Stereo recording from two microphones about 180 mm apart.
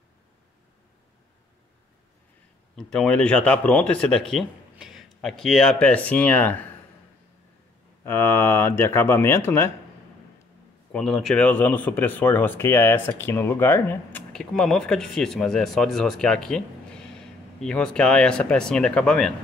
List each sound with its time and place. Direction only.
2.7 s speech: 5° left (ahead or behind)
8.0 s speech: 15° left (ahead or behind)
10.9 s speech: centre (ahead or behind)